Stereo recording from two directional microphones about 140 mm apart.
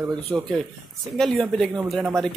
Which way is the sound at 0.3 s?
20° right (ahead or behind).